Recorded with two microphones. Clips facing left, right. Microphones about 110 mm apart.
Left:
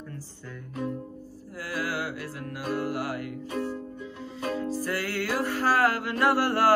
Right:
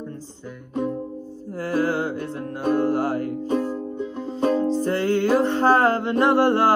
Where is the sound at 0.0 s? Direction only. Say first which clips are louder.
Right 7 dB; 20° right (ahead or behind).